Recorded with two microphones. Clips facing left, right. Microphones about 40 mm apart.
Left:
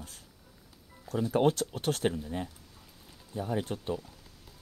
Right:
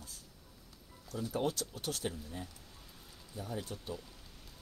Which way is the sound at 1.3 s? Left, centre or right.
Left.